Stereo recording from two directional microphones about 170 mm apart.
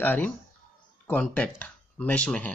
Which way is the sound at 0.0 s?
10° left (ahead or behind).